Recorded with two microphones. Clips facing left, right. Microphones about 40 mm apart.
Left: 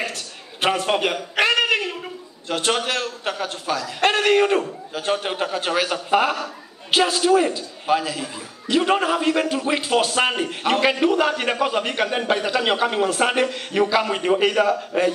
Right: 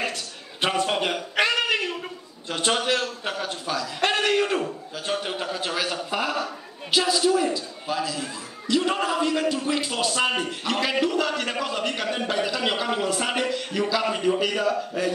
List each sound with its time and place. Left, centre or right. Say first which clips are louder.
0.6 s a man's voice: left 3 dB; centre
1.1 s a sound: left 3 dB; centre
2.5 s a man's voice: left 2 dB; centre
4.0 s a man's voice: left 5 dB; centre
7.5 s a man's voice: left 6 dB; left